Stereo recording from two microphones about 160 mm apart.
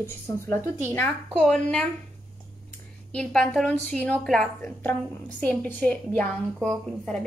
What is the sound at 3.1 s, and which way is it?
A woman's voice, 5° left (ahead or behind).